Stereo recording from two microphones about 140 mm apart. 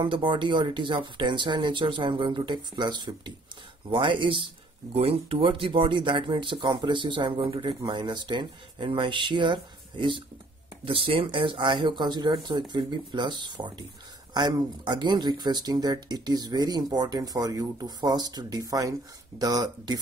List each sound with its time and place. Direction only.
0.0 s speech: 35° right (ahead or behind)